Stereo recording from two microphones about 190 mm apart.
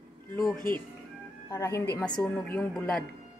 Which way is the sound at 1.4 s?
15° left (ahead or behind).